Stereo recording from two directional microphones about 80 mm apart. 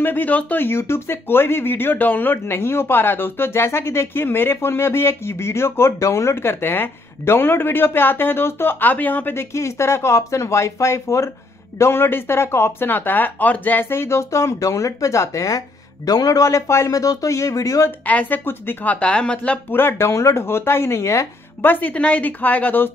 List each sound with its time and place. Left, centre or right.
0.0 s speech: left
18.0 s speech: left
19.7 s speech: left
21.6 s speech: left